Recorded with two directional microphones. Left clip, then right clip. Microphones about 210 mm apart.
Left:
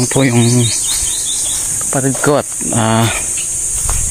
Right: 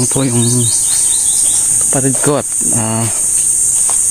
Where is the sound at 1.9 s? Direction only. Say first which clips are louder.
Left 3 dB; 20° right (ahead or behind).